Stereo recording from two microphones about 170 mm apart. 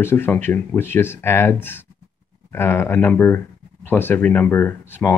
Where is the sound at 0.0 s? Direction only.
15° left (ahead or behind).